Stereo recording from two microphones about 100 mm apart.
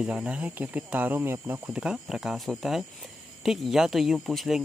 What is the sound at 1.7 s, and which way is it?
Speech, 10° right (ahead or behind).